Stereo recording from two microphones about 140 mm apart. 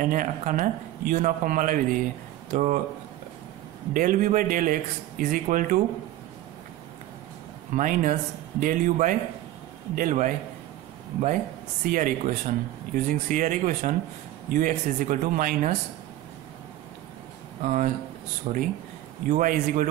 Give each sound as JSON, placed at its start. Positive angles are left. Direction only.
{"t": 0.0, "sound": "speech", "side_deg": -75}
{"t": 3.9, "sound": "speech", "side_deg": -75}
{"t": 7.7, "sound": "speech", "side_deg": -70}
{"t": 11.8, "sound": "speech", "side_deg": -80}
{"t": 17.6, "sound": "speech", "side_deg": -65}
{"t": 18.5, "sound": "speech", "side_deg": -55}
{"t": 19.2, "sound": "speech", "side_deg": -70}